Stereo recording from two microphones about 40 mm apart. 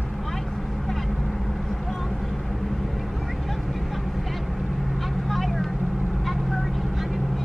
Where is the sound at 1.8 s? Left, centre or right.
Centre.